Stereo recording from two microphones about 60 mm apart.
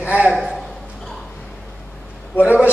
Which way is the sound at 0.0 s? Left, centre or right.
Right.